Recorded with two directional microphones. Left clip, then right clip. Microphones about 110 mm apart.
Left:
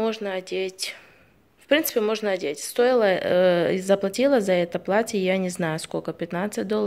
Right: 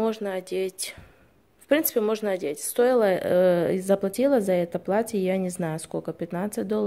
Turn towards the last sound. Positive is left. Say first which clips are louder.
# left 2 dB
turn(degrees=-25)  # may be behind; listen again after turning